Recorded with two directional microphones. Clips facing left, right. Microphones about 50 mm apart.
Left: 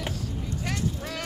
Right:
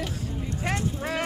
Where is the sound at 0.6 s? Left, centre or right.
Right.